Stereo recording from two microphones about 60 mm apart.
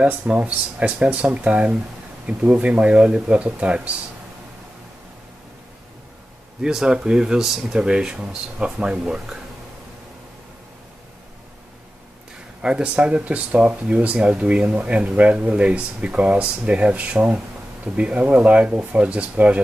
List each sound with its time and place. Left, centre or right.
0.0 s speech: right
6.6 s speech: centre
12.6 s speech: centre